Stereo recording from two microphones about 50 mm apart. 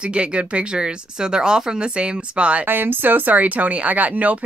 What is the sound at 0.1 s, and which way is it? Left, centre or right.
Speech, right.